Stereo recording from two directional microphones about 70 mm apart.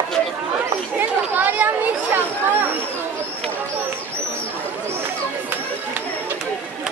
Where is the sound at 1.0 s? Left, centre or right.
Right.